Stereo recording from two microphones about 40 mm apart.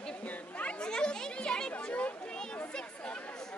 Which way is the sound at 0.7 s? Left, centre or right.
Left.